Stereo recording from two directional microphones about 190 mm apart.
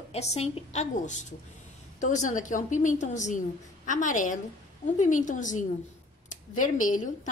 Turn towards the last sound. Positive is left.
turn(degrees=45)  # may be behind; listen again after turning